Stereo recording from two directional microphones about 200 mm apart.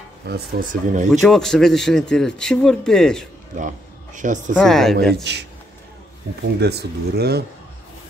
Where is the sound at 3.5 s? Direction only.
40° right (ahead or behind).